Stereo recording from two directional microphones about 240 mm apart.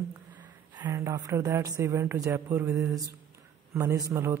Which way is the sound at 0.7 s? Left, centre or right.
Centre.